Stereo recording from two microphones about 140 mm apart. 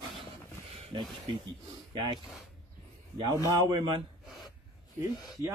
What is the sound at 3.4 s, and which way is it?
Speech, 30° right (ahead or behind).